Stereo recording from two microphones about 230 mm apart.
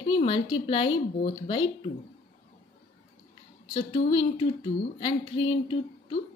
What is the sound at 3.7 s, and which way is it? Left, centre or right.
A woman's voice, left.